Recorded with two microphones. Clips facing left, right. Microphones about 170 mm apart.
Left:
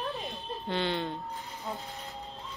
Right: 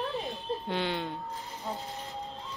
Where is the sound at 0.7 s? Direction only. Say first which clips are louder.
Left 3 dB; 10° right (ahead or behind).